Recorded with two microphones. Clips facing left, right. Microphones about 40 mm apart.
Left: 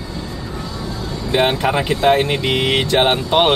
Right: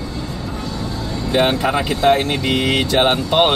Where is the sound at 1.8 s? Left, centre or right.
Left.